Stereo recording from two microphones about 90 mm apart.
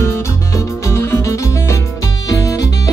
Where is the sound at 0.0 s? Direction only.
30° left (ahead or behind).